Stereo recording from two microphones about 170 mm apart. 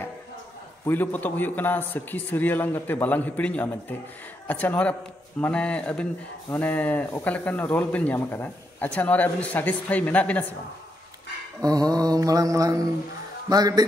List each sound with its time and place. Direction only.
0.8 s speech: 10° left (ahead or behind)
11.6 s mantra: 20° right (ahead or behind)